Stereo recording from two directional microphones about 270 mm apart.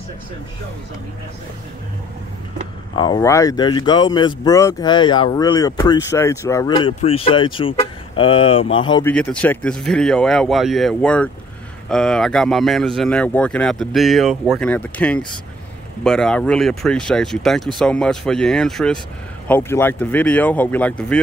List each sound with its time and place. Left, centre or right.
3.0 s speech: centre
9.1 s speech: centre